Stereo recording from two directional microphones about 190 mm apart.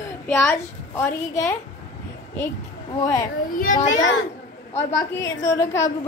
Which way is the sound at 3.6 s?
45° left (ahead or behind).